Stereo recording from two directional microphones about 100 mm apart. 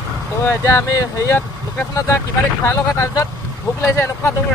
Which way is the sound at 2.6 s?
30° left (ahead or behind).